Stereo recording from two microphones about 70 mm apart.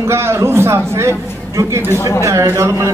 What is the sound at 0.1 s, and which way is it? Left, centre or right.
A man's voice, right.